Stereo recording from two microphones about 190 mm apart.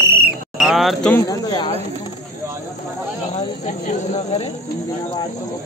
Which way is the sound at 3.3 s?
35° left (ahead or behind).